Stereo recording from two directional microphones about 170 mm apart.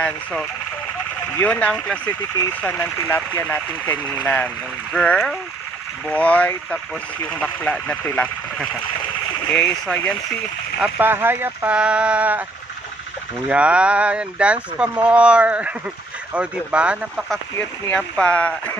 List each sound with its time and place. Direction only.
0.0 s speech: 5° left (ahead or behind)
9.5 s speech: 5° left (ahead or behind)
10.8 s speech: 10° right (ahead or behind)
13.5 s speech: 5° right (ahead or behind)
17.6 s speech: 10° left (ahead or behind)